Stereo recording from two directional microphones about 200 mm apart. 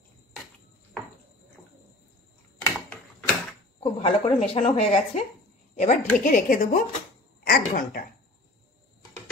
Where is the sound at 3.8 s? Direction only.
25° left (ahead or behind).